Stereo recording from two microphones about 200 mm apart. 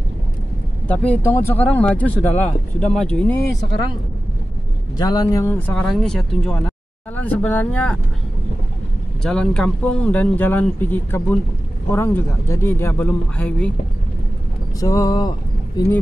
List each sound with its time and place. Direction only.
0.8 s speech: 5° left (ahead or behind)
4.9 s speech: 20° left (ahead or behind)
9.2 s speech: 5° left (ahead or behind)
14.8 s speech: 15° left (ahead or behind)